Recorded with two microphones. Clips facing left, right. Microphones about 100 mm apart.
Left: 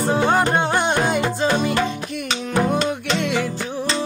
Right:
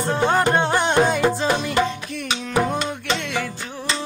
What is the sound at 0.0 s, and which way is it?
Music, 5° left (ahead or behind).